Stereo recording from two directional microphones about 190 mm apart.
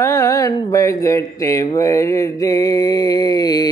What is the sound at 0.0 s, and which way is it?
Speech, 15° left (ahead or behind).